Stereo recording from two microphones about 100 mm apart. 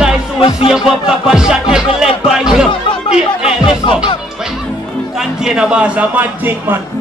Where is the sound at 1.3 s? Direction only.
5° right (ahead or behind).